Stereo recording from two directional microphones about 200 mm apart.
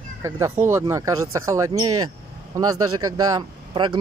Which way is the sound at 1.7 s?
90° right.